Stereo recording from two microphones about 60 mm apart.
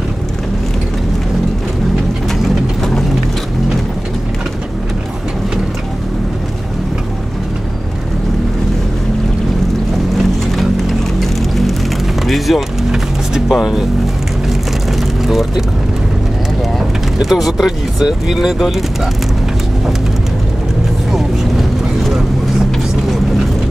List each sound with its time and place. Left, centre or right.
2.4 s mechanisms: centre
11.1 s music: centre
12.3 s vehicle: centre
15.2 s vehicle: centre
16.7 s speech: centre
21.1 s boat: centre